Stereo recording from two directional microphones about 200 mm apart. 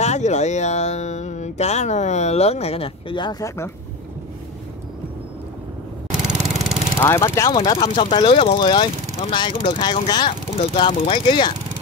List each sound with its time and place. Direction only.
0.0 s speech: 35° left (ahead or behind); by 3.7 s 15° left (ahead or behind)
6.1 s lawn mower: 5° right (ahead or behind)
7.0 s speech: 15° left (ahead or behind)